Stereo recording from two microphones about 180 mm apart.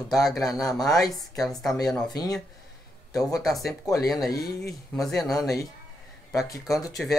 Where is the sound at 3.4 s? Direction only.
Centre (ahead or behind).